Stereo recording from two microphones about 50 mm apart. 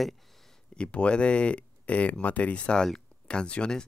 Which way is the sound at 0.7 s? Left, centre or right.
Left.